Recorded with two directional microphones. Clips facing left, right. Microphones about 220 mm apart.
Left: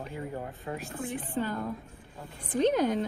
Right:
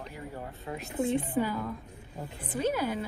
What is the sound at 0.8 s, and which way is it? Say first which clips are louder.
Speech: right 12 dB; 20° right (ahead or behind).